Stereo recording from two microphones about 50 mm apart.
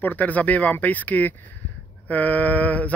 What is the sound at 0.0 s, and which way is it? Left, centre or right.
Speech, left.